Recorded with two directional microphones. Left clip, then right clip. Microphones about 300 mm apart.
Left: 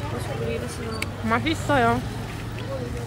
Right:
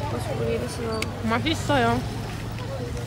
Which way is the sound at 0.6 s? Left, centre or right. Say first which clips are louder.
Right 2 dB; centre.